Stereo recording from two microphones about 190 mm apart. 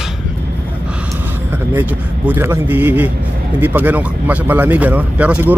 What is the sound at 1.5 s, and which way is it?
Speech, 10° right (ahead or behind).